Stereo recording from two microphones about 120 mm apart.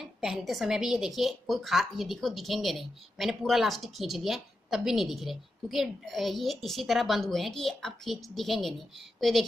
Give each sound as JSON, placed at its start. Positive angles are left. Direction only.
{"t": 0.0, "sound": "a woman's voice", "side_deg": -5}